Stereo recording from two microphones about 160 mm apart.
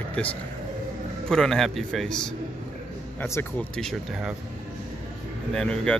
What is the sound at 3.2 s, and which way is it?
Speech, 15° left (ahead or behind).